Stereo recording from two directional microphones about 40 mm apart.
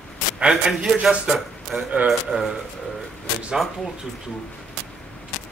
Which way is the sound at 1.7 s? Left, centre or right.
Right.